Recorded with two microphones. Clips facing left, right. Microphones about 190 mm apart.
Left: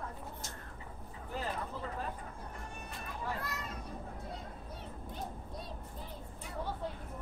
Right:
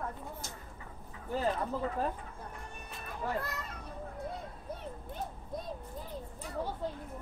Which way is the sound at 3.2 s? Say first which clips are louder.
Right 5 dB; 50° right (ahead or behind).